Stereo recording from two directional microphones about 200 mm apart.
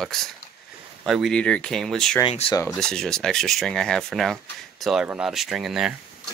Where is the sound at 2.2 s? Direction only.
25° left (ahead or behind).